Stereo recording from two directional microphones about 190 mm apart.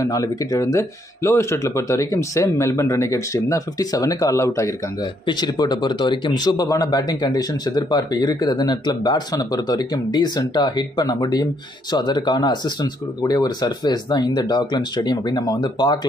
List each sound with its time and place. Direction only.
0.0 s speech: 15° left (ahead or behind)